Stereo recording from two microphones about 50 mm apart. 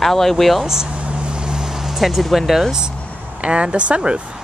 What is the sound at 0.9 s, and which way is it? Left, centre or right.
Vehicle, right.